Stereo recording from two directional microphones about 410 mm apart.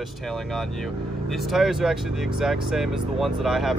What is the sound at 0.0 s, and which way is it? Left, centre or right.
Speech, centre.